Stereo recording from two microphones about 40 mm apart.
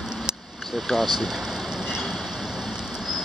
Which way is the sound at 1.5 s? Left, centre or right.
Centre.